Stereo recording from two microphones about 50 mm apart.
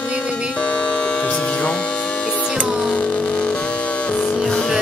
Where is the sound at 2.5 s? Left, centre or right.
Centre.